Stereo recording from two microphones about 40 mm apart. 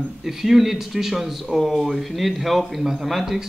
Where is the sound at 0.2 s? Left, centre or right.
Centre.